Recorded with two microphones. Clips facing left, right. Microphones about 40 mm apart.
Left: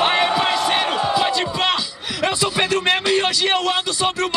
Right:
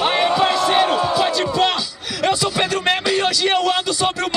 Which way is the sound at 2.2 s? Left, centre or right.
Centre.